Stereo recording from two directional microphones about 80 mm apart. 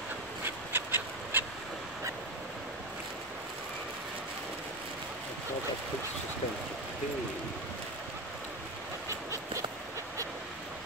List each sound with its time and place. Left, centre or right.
0.5 s duck: right